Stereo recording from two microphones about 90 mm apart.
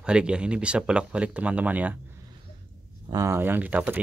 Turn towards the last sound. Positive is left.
turn(degrees=-20)  # may be behind; listen again after turning